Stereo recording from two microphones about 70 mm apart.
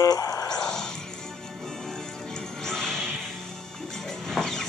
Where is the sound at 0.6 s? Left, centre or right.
Centre.